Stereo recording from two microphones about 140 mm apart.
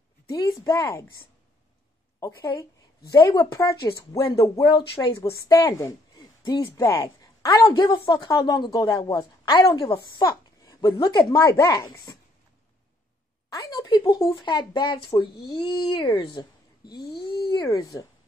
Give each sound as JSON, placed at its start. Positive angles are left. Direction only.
{"t": 0.3, "sound": "speech", "side_deg": 30}
{"t": 2.1, "sound": "a woman's voice", "side_deg": 25}
{"t": 4.7, "sound": "speech", "side_deg": 40}
{"t": 5.5, "sound": "a woman's voice", "side_deg": 25}
{"t": 6.9, "sound": "a woman's voice", "side_deg": 35}
{"t": 11.9, "sound": "speech", "side_deg": 35}
{"t": 13.5, "sound": "speech", "side_deg": 25}